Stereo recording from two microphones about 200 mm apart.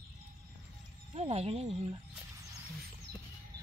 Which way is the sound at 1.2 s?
30° right (ahead or behind).